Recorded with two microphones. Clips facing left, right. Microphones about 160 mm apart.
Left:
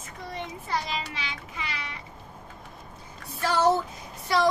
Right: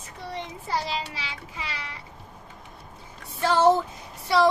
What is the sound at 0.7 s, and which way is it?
Child singing, 30° right (ahead or behind).